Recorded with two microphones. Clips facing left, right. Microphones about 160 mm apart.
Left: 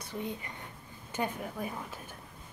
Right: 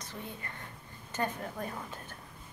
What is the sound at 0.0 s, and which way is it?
Speech, 15° left (ahead or behind).